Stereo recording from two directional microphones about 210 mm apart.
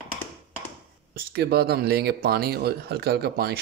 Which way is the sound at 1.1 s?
50° right (ahead or behind).